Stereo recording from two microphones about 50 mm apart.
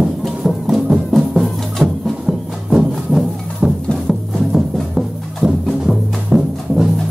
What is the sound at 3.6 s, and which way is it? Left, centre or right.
Music, right.